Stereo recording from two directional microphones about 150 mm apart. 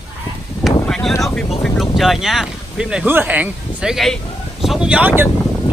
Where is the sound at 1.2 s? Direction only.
Centre (ahead or behind).